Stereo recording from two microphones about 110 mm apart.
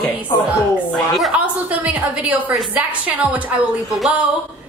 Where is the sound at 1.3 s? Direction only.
10° right (ahead or behind).